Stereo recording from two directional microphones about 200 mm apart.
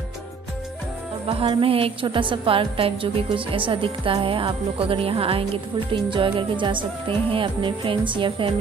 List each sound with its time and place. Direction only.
1.2 s a woman's voice: 25° right (ahead or behind)